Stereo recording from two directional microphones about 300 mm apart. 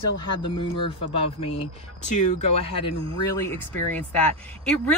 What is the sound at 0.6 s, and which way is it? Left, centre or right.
Speech, centre.